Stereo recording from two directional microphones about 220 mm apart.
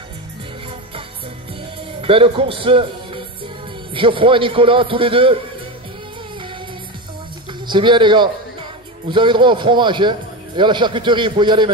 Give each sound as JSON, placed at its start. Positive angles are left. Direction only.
{"t": 2.0, "sound": "a man's voice", "side_deg": -25}
{"t": 7.6, "sound": "a man's voice", "side_deg": -20}